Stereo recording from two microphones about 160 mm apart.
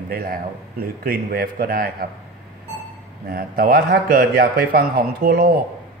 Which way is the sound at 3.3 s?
70° right (ahead or behind).